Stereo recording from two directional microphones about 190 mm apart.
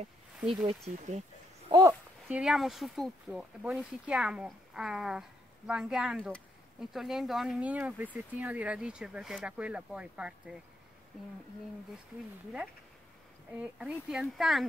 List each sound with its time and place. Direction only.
0.4 s speech: centre (ahead or behind)
0.7 s speech: 35° right (ahead or behind)
1.7 s speech: 20° right (ahead or behind)
2.2 s speech: 5° right (ahead or behind)
13.6 s speech: 5° right (ahead or behind)